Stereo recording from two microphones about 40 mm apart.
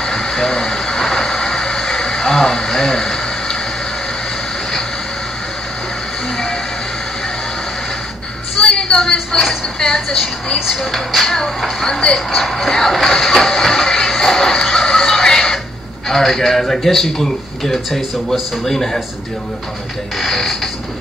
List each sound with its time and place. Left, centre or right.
0.0 s vehicle: centre
6.3 s music: centre
8.5 s a sound: centre
9.8 s speech: centre
12.4 s music: centre
16.1 s speech: centre
20.2 s speech: centre